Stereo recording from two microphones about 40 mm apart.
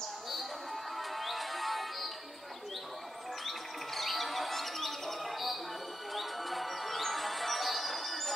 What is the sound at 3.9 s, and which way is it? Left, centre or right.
Bird, centre.